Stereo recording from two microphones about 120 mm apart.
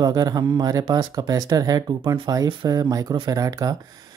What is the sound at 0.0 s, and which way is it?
Speech, 35° right (ahead or behind).